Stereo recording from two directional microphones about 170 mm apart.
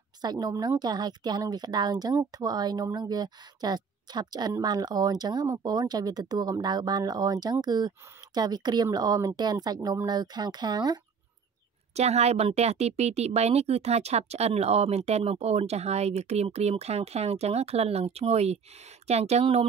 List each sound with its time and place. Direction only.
0.2 s a woman's voice: 25° right (ahead or behind)
11.9 s speech: 40° right (ahead or behind)